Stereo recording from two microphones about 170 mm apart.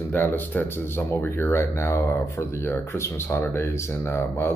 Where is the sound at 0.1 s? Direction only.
10° left (ahead or behind).